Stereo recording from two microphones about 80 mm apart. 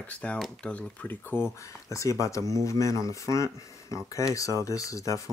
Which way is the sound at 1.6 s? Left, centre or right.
Left.